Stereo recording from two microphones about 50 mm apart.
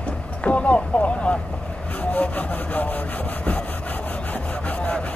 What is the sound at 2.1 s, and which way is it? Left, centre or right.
Vehicle, left.